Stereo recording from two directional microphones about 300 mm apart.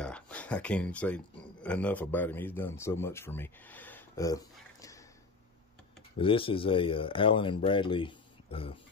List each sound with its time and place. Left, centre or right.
0.0 s speech: centre
6.1 s speech: centre